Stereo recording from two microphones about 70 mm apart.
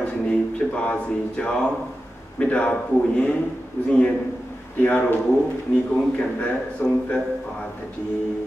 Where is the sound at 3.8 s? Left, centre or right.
Left.